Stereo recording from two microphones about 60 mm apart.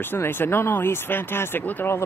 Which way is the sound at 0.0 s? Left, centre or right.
Left.